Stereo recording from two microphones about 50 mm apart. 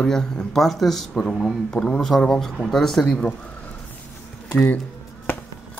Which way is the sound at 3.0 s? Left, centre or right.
Centre.